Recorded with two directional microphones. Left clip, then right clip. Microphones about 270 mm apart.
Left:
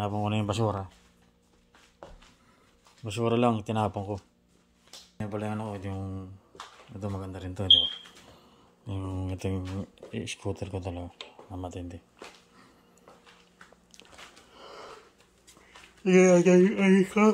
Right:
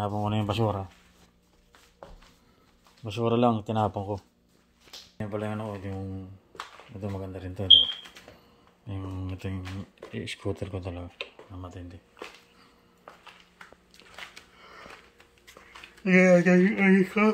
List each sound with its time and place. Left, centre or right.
0.0 s speech: centre
3.0 s speech: centre
8.8 s speech: centre
10.1 s speech: centre
14.6 s a sound: left
16.0 s speech: centre